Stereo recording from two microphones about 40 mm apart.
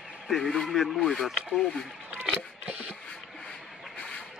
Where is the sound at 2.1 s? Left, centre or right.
Right.